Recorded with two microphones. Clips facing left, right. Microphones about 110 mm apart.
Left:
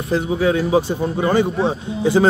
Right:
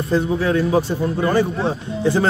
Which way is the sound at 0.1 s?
10° left (ahead or behind).